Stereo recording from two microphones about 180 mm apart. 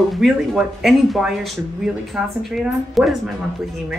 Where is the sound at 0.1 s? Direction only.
Centre (ahead or behind).